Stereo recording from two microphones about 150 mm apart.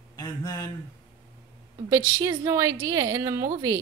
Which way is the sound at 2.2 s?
20° right (ahead or behind).